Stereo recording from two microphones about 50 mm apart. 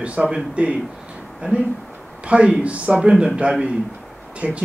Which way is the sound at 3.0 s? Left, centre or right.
Centre.